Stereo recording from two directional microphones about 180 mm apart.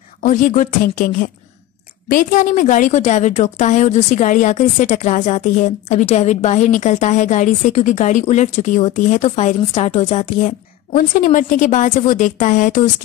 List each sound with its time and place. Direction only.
0.2 s a woman's voice: 45° left (ahead or behind)
10.9 s a woman's voice: 50° left (ahead or behind)